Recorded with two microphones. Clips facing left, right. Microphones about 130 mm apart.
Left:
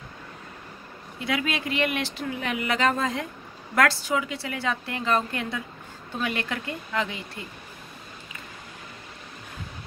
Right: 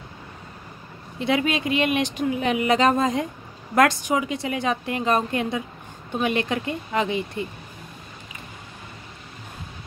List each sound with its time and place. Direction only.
1.2 s speech: 25° right (ahead or behind)